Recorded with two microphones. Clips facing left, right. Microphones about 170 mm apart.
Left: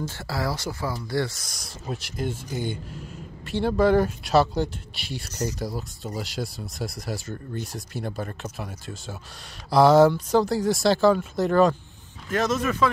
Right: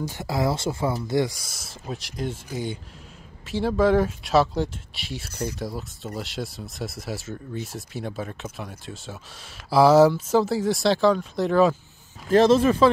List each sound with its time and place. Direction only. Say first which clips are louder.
0.0 s speech: right 4 dB; 15° right (ahead or behind); by 11.7 s centre (ahead or behind)
12.3 s speech: right 8 dB; 30° right (ahead or behind)